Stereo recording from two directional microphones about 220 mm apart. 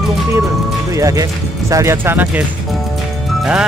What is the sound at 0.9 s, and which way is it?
Speech, 15° right (ahead or behind).